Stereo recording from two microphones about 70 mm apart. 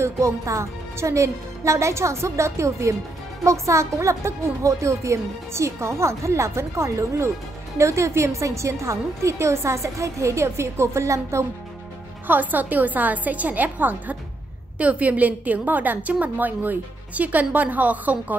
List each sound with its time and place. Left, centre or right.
0.0 s speech: right
12.3 s a woman's voice: right